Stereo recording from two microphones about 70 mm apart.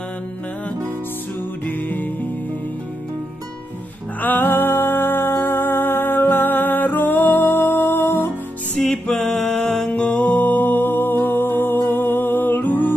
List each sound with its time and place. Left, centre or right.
1.7 s music: left
4.2 s music: left
8.7 s music: centre
9.8 s music: left